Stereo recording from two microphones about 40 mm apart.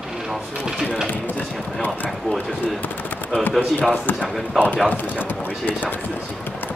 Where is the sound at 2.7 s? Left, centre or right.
Left.